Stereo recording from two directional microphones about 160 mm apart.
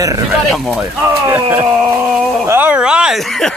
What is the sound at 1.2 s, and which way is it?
Speech, 15° right (ahead or behind).